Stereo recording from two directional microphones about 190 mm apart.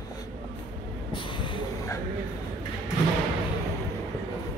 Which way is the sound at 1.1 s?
25° left (ahead or behind).